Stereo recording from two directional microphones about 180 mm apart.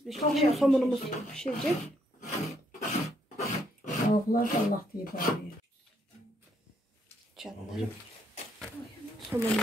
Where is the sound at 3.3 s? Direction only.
45° left (ahead or behind).